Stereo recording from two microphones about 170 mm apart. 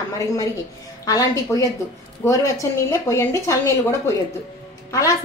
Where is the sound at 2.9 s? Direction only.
15° left (ahead or behind).